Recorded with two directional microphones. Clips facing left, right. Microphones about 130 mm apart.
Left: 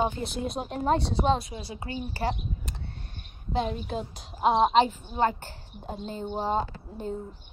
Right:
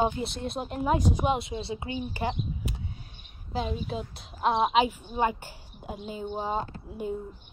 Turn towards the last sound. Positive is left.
turn(degrees=-5)  # may be behind; listen again after turning